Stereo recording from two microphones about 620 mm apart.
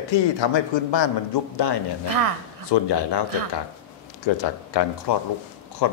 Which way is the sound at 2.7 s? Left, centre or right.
Left.